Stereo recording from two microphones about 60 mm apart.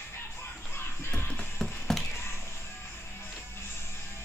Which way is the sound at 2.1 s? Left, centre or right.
Left.